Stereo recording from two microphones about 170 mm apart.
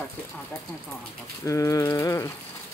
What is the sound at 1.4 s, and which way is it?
Speech, 20° left (ahead or behind).